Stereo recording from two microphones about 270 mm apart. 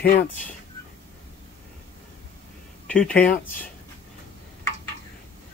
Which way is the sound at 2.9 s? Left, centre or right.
Centre.